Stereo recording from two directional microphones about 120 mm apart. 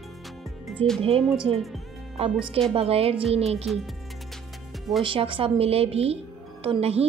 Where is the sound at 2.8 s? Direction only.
55° right (ahead or behind).